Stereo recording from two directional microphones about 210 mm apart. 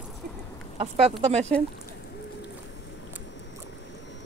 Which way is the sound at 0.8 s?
30° right (ahead or behind).